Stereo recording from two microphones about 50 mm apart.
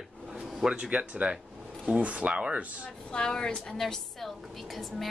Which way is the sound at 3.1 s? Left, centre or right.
Centre.